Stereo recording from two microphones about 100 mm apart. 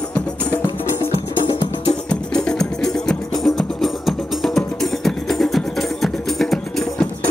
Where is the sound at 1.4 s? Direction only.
55° left (ahead or behind).